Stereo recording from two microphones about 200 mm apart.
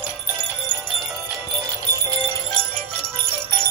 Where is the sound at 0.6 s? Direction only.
5° left (ahead or behind).